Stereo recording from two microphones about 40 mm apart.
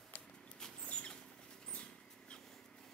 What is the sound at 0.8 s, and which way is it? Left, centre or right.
Rodents, left.